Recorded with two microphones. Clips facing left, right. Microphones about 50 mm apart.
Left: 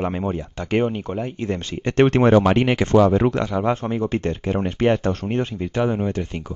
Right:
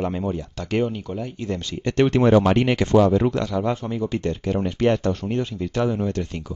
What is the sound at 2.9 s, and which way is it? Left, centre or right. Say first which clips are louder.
Speech: left 1 dB; left.